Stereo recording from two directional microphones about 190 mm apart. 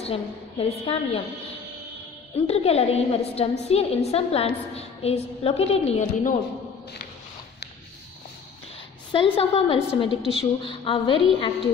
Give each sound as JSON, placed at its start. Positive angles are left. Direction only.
{"t": 0.0, "sound": "a woman's voice", "side_deg": 30}
{"t": 2.3, "sound": "a woman's voice", "side_deg": 35}
{"t": 9.1, "sound": "a woman's voice", "side_deg": 25}